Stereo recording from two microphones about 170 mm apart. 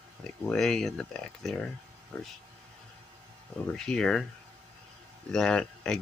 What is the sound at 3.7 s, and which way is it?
Speech, 5° left (ahead or behind).